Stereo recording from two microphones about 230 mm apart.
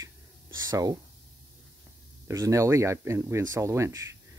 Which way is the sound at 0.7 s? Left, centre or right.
Centre.